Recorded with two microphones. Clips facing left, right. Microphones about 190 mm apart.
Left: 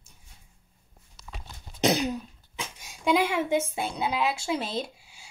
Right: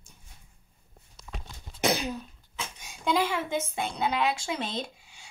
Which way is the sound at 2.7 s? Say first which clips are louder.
Left 3 dB; centre (ahead or behind).